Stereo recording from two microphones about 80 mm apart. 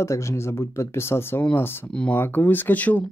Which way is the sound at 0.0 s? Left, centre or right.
Left.